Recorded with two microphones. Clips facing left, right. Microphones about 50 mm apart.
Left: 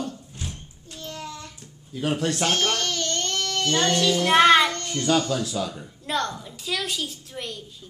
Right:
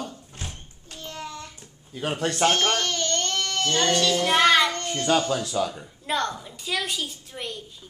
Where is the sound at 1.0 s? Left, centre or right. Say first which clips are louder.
Even; centre.